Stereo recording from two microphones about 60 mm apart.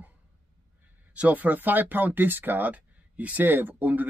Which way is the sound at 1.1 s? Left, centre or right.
Right.